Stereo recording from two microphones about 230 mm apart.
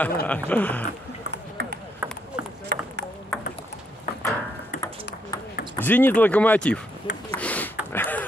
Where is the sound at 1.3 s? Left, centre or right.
Right.